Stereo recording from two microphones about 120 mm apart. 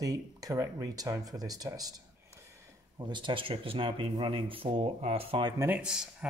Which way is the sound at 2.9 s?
40° right (ahead or behind).